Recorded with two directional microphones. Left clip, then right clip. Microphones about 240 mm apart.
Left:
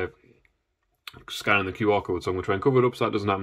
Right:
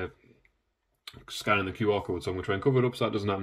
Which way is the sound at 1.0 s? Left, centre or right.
Centre.